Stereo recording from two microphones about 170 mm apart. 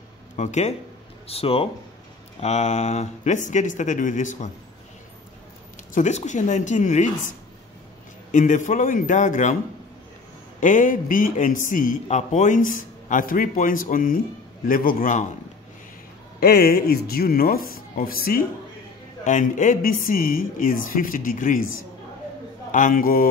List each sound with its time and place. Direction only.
0.4 s a man's voice: 45° left (ahead or behind)
5.9 s a man's voice: 45° left (ahead or behind)
8.3 s a man's voice: 50° left (ahead or behind)
10.6 s a man's voice: 50° left (ahead or behind)
16.3 s speech: 65° left (ahead or behind)
19.2 s a man's voice: 50° left (ahead or behind)
22.7 s a man's voice: 50° left (ahead or behind)